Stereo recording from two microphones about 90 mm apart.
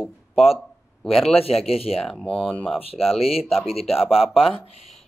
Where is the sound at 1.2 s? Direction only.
90° left.